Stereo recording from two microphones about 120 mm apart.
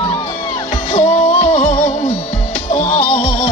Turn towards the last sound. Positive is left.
turn(degrees=60)  # may be behind; listen again after turning